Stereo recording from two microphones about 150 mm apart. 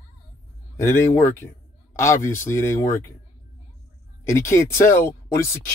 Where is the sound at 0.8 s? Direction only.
15° left (ahead or behind).